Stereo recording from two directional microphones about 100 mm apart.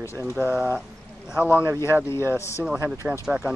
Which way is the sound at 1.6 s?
25° right (ahead or behind).